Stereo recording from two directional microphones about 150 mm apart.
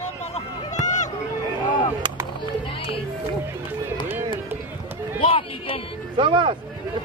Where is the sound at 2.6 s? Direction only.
35° left (ahead or behind).